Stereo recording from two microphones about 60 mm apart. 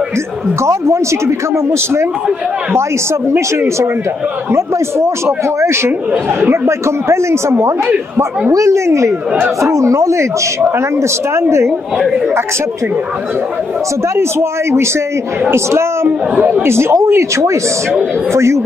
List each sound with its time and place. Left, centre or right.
0.7 s speech: right
3.3 s speech: right
14.1 s speech: right